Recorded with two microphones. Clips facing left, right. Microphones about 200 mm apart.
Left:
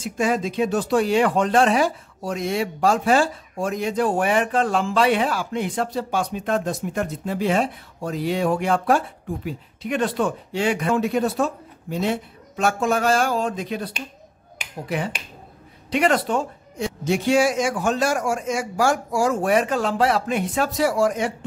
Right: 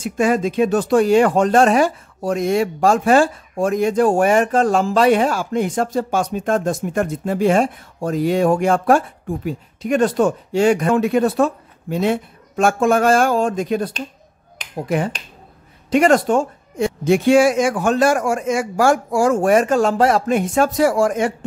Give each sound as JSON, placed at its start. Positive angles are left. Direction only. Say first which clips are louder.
{"t": 0.0, "sound": "speech", "louder": "right 5 dB", "side_deg": -55}